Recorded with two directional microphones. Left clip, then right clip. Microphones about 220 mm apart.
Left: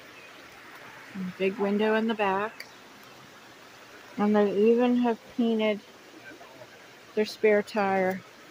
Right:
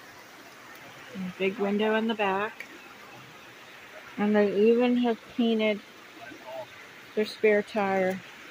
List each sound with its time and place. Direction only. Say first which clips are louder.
1.4 s speech: left 1 dB; 10° left (ahead or behind)
4.2 s speech: even; 5° left (ahead or behind)
7.4 s speech: even; 5° left (ahead or behind)